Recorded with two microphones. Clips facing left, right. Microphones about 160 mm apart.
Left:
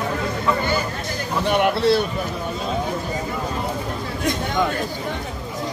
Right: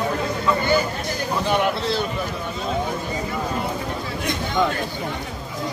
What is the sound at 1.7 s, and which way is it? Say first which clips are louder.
Speech: left 6 dB; 65° left (ahead or behind).